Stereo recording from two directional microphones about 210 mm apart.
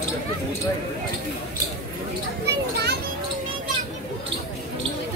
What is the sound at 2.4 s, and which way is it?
Speech, 50° right (ahead or behind).